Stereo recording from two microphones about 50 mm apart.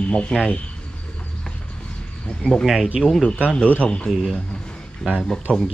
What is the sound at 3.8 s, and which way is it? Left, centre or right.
Speech, left.